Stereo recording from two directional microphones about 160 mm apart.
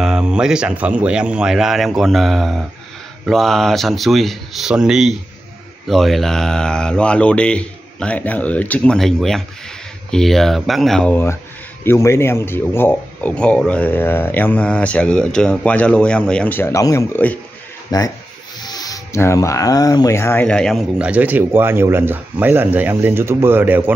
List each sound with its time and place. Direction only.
0.0 s speech: 5° right (ahead or behind); by 20.4 s 15° left (ahead or behind)
20.4 s speech: 5° left (ahead or behind)
21.0 s speech: 10° right (ahead or behind)